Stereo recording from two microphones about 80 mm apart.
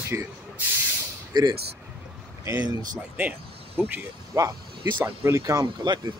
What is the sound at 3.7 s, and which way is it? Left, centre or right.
Speech, right.